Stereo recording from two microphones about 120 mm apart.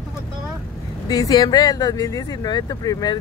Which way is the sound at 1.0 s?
35° left (ahead or behind).